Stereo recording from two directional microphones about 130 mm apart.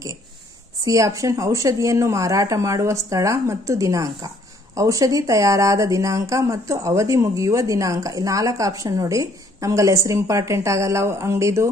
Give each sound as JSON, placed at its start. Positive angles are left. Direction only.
{"t": 0.8, "sound": "speech", "side_deg": -25}